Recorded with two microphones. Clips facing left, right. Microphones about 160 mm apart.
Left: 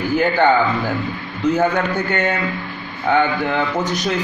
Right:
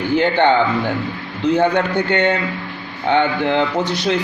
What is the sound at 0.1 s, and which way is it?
Speech, 25° right (ahead or behind).